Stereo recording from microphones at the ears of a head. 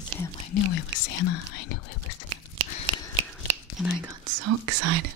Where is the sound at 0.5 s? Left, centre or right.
Left.